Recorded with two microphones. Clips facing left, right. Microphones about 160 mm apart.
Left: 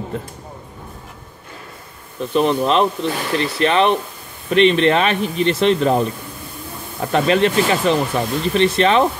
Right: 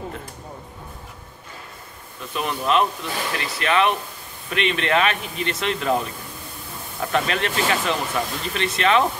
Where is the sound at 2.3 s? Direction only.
30° left (ahead or behind).